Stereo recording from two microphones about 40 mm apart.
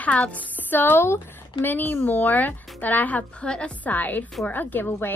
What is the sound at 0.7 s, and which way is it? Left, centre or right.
Speech, left.